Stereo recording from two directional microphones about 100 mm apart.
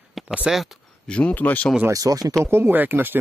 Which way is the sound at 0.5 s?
5° right (ahead or behind).